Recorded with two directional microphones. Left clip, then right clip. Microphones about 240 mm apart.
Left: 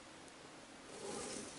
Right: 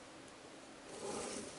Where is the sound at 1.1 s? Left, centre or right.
Centre.